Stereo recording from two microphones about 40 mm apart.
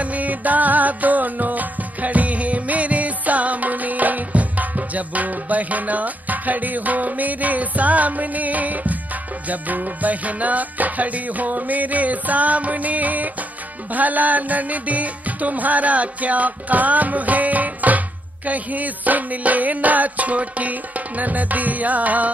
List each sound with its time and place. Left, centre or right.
0.0 s music: right